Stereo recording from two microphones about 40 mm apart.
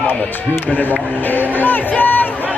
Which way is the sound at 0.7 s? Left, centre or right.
Left.